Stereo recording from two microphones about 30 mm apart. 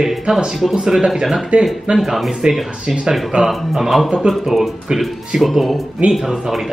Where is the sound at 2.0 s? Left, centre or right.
Centre.